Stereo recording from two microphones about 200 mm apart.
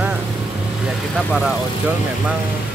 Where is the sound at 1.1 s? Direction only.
Centre (ahead or behind).